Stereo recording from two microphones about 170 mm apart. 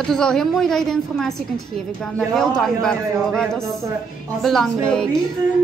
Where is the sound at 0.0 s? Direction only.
5° left (ahead or behind).